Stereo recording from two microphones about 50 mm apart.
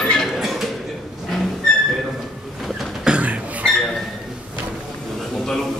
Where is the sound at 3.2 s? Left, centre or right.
Right.